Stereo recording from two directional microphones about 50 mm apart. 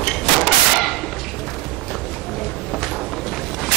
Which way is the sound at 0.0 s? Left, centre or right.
Centre.